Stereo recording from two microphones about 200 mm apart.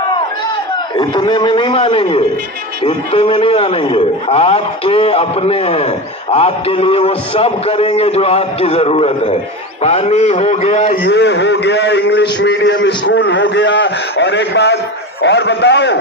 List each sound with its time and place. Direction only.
0.9 s a man's voice: 20° left (ahead or behind)
11.1 s a man's voice: 60° left (ahead or behind)